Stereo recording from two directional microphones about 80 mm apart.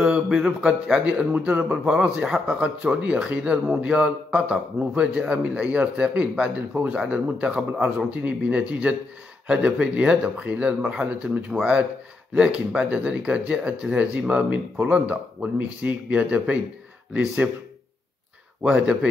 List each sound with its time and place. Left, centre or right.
0.0 s a man's voice: centre
1.3 s a man's voice: centre
1.6 s a man's voice: centre
12.4 s a man's voice: centre
18.6 s a man's voice: centre